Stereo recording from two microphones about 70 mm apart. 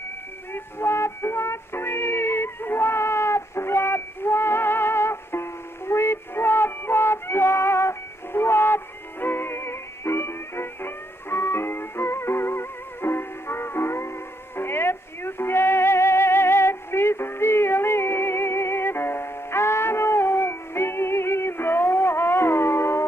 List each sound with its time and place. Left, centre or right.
0.5 s music: left